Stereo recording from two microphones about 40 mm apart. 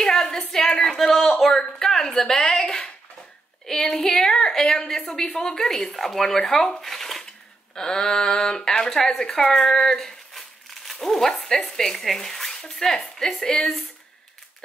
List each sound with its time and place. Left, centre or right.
0.0 s a sound: centre
0.5 s speech: centre
0.8 s a sound: centre
3.6 s speech: centre
6.8 s shuffling cards: centre
7.7 s speech: centre